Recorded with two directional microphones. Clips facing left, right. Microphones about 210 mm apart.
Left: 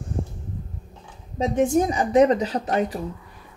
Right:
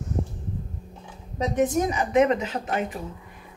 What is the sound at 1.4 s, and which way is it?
A woman's voice, 30° left (ahead or behind).